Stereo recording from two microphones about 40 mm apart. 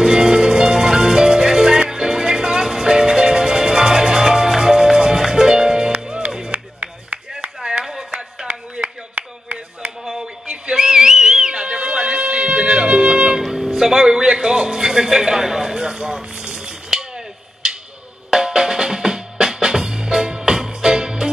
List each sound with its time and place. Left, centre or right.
0.0 s music: centre
6.8 s a sound: right
10.4 s whistle: centre
13.5 s music: centre
18.3 s drum: centre
19.3 s music: centre